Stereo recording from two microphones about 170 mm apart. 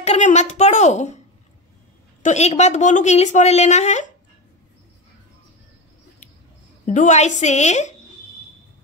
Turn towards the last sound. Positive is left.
turn(degrees=40)  # may be behind; listen again after turning